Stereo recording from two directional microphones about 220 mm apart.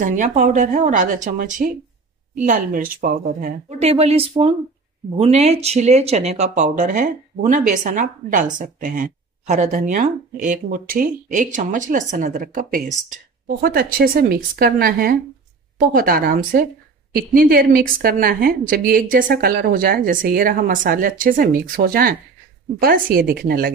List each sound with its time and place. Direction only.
0.0 s speech: 35° right (ahead or behind)